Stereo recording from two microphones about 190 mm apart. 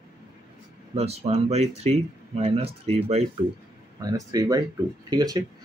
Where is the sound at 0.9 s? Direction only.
35° right (ahead or behind).